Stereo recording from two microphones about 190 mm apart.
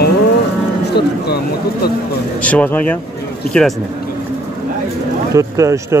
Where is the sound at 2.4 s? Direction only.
5° left (ahead or behind).